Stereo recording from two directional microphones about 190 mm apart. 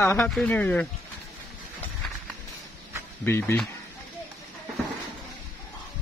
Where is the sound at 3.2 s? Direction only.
10° left (ahead or behind).